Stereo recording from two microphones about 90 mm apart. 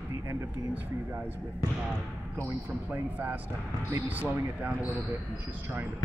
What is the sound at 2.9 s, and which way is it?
Speech, 20° right (ahead or behind).